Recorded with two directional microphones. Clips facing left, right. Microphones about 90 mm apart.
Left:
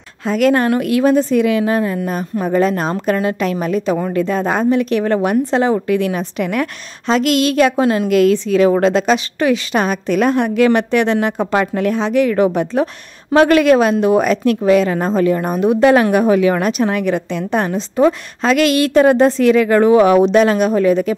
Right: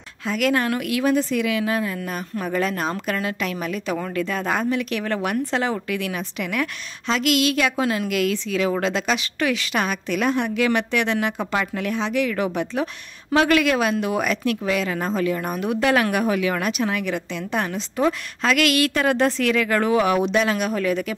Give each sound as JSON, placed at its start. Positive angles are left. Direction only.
{"t": 0.2, "sound": "speech", "side_deg": 40}